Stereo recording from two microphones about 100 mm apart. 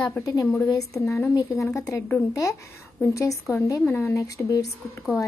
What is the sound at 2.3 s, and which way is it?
Speech, 35° left (ahead or behind).